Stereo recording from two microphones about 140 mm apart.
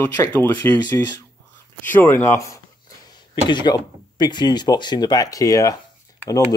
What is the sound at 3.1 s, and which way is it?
Speech, 35° left (ahead or behind).